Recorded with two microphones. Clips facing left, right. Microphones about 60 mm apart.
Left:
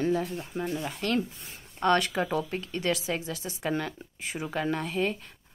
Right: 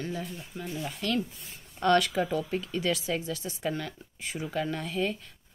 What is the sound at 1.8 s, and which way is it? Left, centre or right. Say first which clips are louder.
Speech: right 1 dB; centre.